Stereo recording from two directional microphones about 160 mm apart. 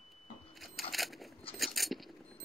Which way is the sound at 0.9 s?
Centre (ahead or behind).